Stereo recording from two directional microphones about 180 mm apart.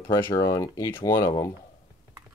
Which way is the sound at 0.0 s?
15° left (ahead or behind).